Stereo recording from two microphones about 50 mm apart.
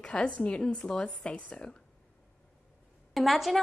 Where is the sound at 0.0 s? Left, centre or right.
Left.